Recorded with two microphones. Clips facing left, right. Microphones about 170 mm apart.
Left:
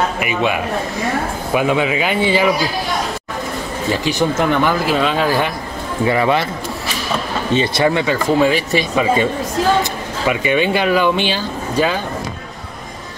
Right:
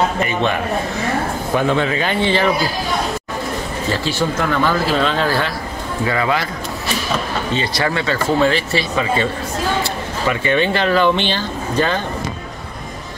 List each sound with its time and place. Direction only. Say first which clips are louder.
0.2 s speech: even; 10° left (ahead or behind)
3.9 s a man's voice: left 3 dB; 15° left (ahead or behind)
7.5 s speech: left 6 dB; 20° left (ahead or behind)